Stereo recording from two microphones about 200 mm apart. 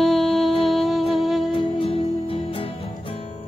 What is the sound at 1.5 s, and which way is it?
Music, 25° left (ahead or behind).